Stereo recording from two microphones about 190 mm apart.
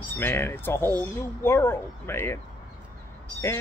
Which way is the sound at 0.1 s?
10° left (ahead or behind).